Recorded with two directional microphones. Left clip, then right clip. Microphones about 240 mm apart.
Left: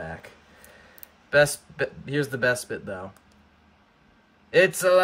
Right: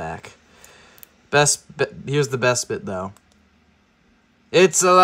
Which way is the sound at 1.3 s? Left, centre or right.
Right.